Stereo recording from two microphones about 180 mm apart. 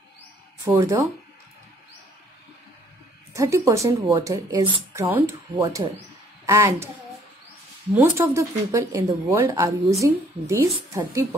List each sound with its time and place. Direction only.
0.7 s speech: 15° right (ahead or behind)
3.3 s a child's voice: 15° right (ahead or behind)
7.9 s speech: 15° right (ahead or behind)